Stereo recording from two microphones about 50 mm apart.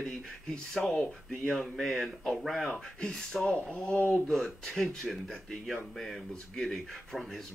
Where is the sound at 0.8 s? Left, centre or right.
Left.